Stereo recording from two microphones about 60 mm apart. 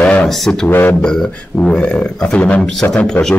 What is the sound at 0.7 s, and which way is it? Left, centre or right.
Speech, left.